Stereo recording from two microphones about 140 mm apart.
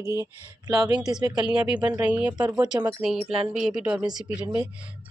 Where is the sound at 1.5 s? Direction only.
5° right (ahead or behind).